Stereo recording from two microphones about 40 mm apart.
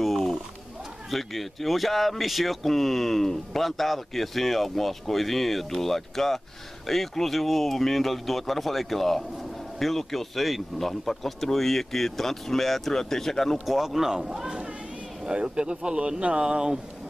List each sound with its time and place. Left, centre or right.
0.0 s bird: centre
1.1 s speech: centre
13.7 s speech: centre